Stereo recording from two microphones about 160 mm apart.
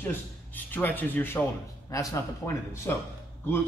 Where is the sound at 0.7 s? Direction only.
10° left (ahead or behind).